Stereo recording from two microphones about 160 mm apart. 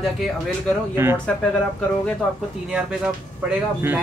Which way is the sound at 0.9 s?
15° right (ahead or behind).